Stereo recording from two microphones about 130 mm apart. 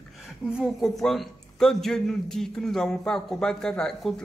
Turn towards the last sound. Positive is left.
turn(degrees=5)  # may be behind; listen again after turning